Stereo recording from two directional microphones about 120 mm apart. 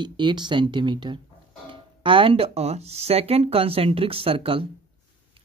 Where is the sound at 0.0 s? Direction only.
40° right (ahead or behind).